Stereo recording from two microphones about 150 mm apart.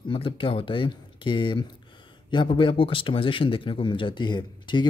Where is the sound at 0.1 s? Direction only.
35° left (ahead or behind).